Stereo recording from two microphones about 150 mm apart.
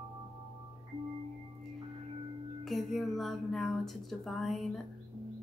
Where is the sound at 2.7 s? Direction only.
Centre (ahead or behind).